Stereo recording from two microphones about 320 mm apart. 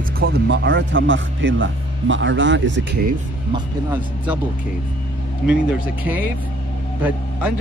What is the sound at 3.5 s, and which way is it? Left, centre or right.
Speech, centre.